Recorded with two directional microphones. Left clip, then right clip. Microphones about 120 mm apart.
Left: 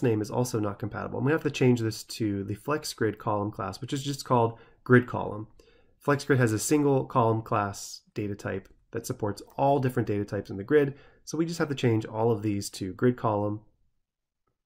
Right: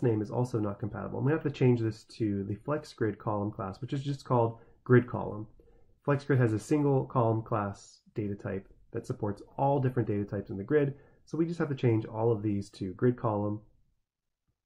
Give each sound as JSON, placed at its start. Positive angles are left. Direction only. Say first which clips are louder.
{"t": 0.0, "sound": "speech", "louder": "left 3 dB", "side_deg": 20}